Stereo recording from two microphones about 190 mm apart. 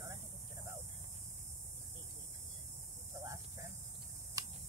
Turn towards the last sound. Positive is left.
turn(degrees=-20)  # may be behind; listen again after turning